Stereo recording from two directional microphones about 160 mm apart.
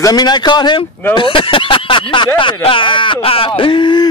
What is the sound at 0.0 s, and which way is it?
Speech, 25° left (ahead or behind).